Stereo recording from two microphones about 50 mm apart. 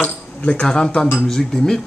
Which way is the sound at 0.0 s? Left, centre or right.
Left.